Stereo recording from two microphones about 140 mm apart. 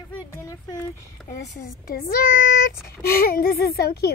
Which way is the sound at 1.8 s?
90° left.